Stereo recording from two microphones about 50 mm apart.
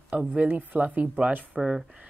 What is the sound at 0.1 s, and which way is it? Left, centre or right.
Speech, right.